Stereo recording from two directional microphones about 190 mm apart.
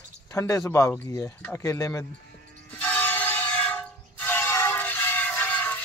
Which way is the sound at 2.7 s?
10° left (ahead or behind).